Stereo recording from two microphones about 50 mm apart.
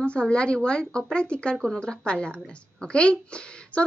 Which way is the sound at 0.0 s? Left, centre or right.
Left.